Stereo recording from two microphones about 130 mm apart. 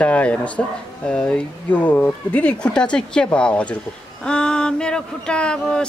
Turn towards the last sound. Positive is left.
turn(degrees=5)  # may be behind; listen again after turning